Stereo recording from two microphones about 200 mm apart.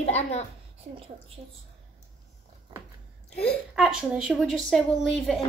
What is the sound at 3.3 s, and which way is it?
Speech, 5° left (ahead or behind).